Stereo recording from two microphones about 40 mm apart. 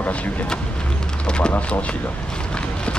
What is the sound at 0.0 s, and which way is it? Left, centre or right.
Speech, left.